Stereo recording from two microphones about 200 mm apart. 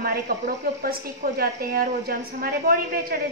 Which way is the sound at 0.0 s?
50° right (ahead or behind).